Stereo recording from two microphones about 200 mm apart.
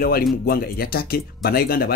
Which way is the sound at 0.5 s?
50° left (ahead or behind).